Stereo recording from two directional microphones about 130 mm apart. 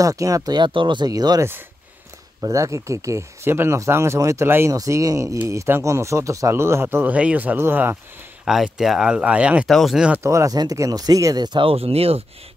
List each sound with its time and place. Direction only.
0.0 s speech: 25° right (ahead or behind)
8.5 s speech: 5° right (ahead or behind)
10.2 s speech: 25° right (ahead or behind); by 12.2 s 50° right (ahead or behind)